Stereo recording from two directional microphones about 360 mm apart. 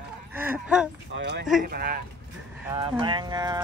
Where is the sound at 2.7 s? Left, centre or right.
Centre.